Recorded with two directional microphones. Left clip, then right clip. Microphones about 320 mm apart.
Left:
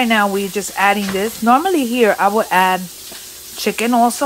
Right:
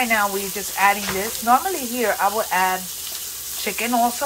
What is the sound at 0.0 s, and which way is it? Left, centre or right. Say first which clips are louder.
Speech: left 5 dB; left.